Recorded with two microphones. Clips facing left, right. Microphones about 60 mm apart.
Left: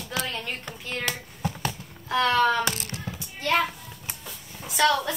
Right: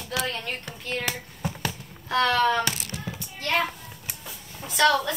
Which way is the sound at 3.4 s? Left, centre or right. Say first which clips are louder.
Left 2 dB; centre.